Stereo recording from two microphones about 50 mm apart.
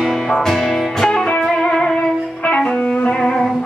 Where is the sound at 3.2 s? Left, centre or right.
Centre.